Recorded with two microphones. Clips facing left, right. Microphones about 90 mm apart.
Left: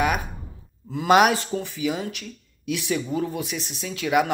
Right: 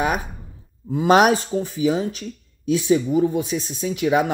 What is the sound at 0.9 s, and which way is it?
A woman's voice, 35° right (ahead or behind).